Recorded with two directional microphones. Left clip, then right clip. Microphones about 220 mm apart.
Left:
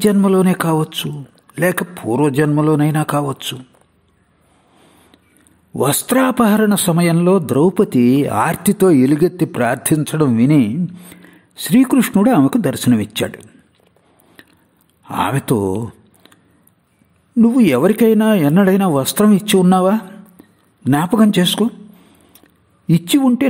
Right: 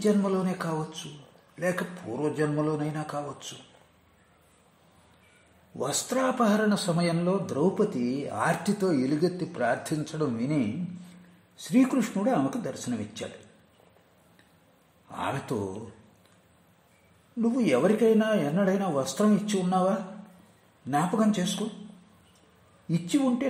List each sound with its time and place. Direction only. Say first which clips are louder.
0.0 s a man's voice: left 12 dB; 40° left (ahead or behind)
5.8 s a man's voice: left 13 dB; 40° left (ahead or behind)
14.4 s a sound: left 19 dB; 40° left (ahead or behind)
15.0 s speech: left 14 dB; 40° left (ahead or behind)
17.4 s a man's voice: left 12 dB; 40° left (ahead or behind)
22.8 s a man's voice: left 12 dB; 40° left (ahead or behind)